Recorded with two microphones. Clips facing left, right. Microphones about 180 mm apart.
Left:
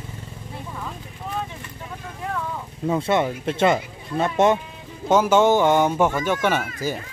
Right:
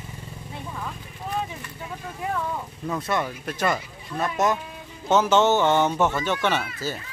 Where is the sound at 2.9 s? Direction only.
25° left (ahead or behind).